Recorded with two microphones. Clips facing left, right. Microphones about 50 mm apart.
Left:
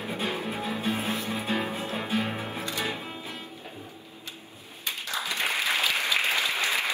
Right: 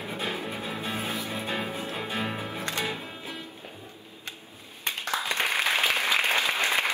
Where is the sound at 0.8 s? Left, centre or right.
Left.